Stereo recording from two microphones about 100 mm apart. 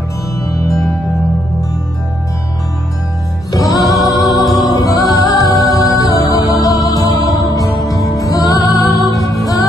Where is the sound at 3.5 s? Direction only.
35° left (ahead or behind).